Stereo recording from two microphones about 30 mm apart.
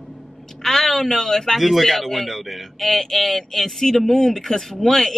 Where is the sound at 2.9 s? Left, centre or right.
Centre.